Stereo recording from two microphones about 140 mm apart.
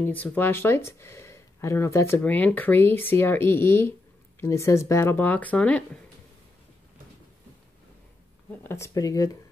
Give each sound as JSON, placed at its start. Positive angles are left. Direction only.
{"t": 0.0, "sound": "speech", "side_deg": 10}
{"t": 8.6, "sound": "speech", "side_deg": 20}